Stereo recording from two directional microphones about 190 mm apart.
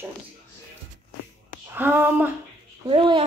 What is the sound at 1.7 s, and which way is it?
Speech, 10° right (ahead or behind).